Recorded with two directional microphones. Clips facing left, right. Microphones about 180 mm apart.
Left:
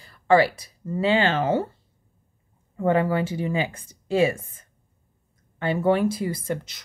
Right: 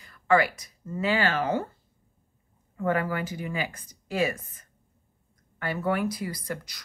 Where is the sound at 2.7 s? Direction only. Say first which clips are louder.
Left 6 dB; 25° left (ahead or behind).